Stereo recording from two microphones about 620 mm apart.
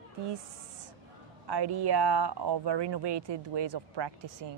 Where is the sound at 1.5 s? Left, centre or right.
Right.